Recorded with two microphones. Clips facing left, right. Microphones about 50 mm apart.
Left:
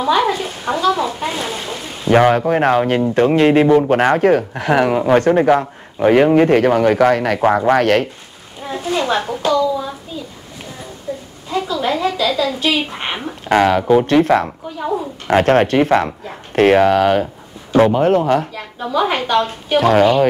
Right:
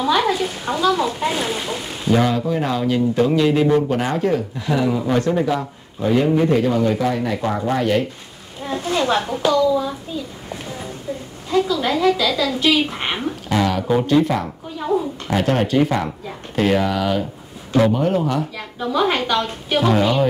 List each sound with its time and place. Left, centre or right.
0.0 s a woman's voice: left
1.4 s speech: centre
2.0 s speech: left
8.6 s a sound: centre
11.5 s a woman's voice: left
13.0 s a woman's voice: centre
13.5 s speech: left
14.8 s a woman's voice: centre
15.2 s speech: left
18.8 s a woman's voice: centre
19.8 s speech: left